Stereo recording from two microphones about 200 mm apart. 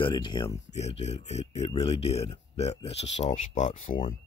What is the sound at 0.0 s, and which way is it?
Speech, 25° left (ahead or behind).